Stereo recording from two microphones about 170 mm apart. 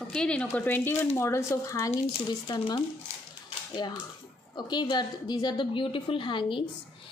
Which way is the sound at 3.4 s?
25° left (ahead or behind).